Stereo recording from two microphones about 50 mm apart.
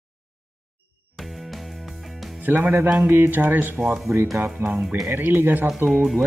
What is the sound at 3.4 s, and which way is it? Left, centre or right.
Speech, right.